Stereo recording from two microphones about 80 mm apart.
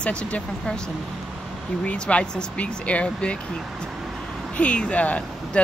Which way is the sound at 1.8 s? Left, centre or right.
Centre.